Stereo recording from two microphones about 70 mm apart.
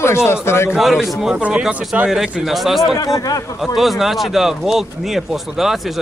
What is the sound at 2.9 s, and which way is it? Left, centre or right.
Speech, left.